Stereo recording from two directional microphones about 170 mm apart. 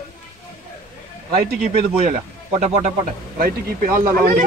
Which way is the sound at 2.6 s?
45° right (ahead or behind).